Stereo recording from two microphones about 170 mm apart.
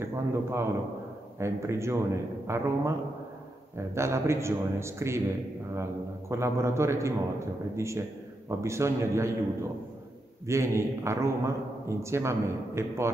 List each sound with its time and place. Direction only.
0.0 s a man's voice: 15° right (ahead or behind)